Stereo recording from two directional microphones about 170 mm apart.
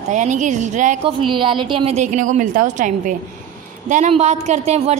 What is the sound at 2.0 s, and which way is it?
A woman's voice, 50° right (ahead or behind).